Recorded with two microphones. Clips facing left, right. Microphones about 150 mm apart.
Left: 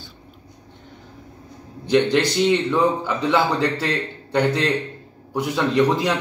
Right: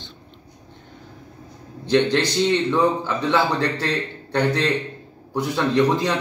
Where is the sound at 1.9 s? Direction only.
10° left (ahead or behind).